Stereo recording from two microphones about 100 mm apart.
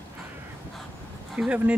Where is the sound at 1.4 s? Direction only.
15° right (ahead or behind).